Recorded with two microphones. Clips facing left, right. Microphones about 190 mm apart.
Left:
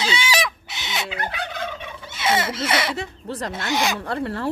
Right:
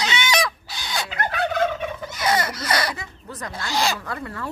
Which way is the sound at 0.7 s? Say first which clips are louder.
Even; 25° left (ahead or behind).